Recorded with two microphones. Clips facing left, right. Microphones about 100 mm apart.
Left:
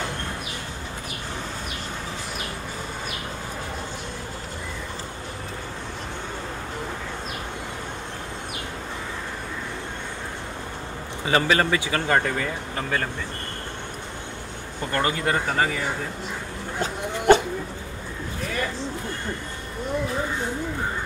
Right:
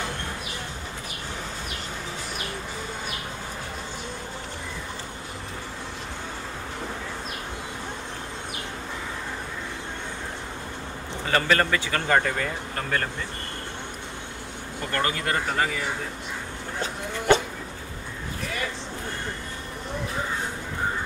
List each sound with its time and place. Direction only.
11.2 s speech: 10° left (ahead or behind)
14.9 s speech: 15° left (ahead or behind)
15.4 s speech: 5° left (ahead or behind)